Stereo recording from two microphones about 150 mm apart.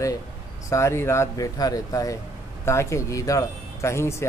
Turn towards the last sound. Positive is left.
turn(degrees=20)  # may be behind; listen again after turning